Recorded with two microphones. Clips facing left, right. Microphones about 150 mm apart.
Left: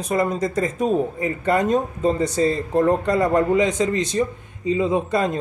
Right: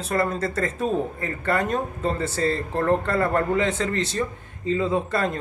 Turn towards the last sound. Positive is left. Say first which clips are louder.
# left 3 dB
turn(degrees=15)  # may be behind; listen again after turning